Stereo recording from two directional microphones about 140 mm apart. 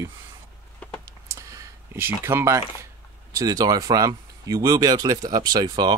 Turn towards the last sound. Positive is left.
turn(degrees=-30)  # may be behind; listen again after turning